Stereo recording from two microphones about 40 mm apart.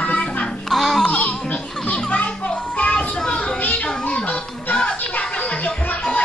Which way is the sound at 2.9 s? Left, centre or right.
Centre.